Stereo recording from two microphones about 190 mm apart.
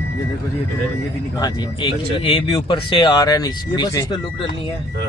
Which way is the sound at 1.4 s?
25° left (ahead or behind).